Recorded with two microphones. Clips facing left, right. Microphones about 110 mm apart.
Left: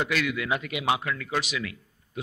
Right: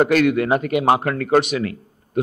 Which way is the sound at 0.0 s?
50° right (ahead or behind).